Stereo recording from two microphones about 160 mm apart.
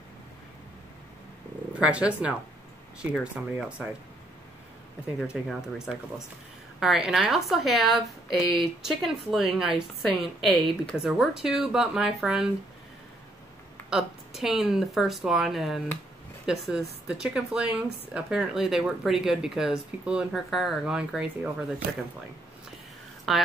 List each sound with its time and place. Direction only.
1.7 s speech: 5° right (ahead or behind)
5.2 s a woman's voice: 5° right (ahead or behind)
13.8 s a woman's voice: 5° right (ahead or behind)
23.3 s speech: centre (ahead or behind)